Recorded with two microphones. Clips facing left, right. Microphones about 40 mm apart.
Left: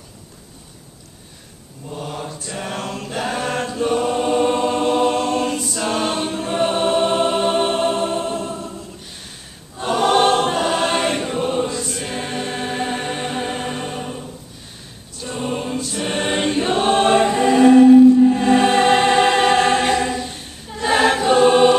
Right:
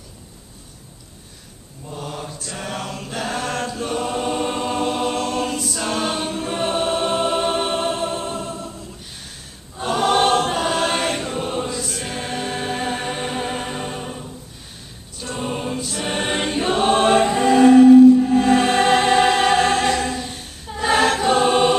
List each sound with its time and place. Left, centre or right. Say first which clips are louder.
1.9 s choir: left 2 dB; centre